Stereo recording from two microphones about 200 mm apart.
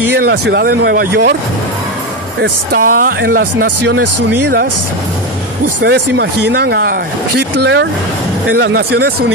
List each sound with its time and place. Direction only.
0.2 s speech: 55° right (ahead or behind)
2.4 s speech: 45° right (ahead or behind)
5.8 s speech: 60° right (ahead or behind)